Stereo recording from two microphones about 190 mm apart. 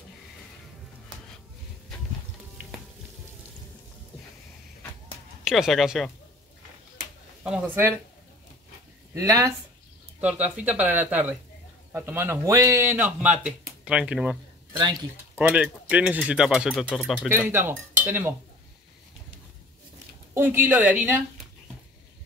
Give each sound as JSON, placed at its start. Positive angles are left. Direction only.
{"t": 5.4, "sound": "speech", "side_deg": 0}
{"t": 7.4, "sound": "speech", "side_deg": -5}
{"t": 9.1, "sound": "speech", "side_deg": -15}
{"t": 10.2, "sound": "speech", "side_deg": -5}
{"t": 17.5, "sound": "speech", "side_deg": -15}
{"t": 20.3, "sound": "speech", "side_deg": -10}